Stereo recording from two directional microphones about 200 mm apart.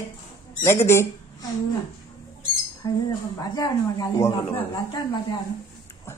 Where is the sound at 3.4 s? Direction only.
20° left (ahead or behind).